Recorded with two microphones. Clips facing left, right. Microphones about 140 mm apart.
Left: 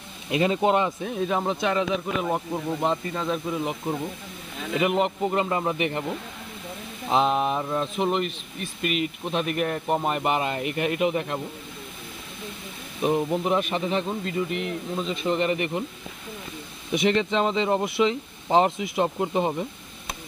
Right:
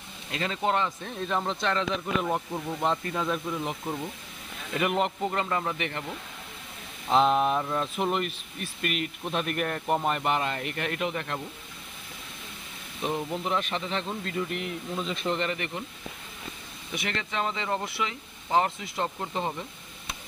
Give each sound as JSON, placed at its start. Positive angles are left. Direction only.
{"t": 0.3, "sound": "speech", "side_deg": 15}
{"t": 5.3, "sound": "speech", "side_deg": 15}
{"t": 7.1, "sound": "speech", "side_deg": 5}
{"t": 13.0, "sound": "speech", "side_deg": 15}
{"t": 15.2, "sound": "speech", "side_deg": 10}
{"t": 16.9, "sound": "speech", "side_deg": 20}